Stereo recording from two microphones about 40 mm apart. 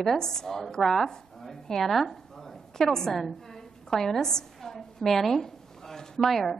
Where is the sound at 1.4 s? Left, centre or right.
Centre.